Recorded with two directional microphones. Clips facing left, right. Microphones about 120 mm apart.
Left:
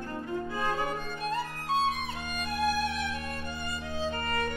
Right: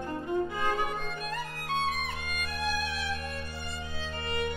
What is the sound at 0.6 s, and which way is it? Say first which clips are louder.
Music: even; 30° left (ahead or behind).